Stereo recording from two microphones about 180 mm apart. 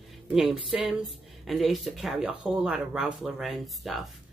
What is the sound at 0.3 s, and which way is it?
Speech, centre (ahead or behind).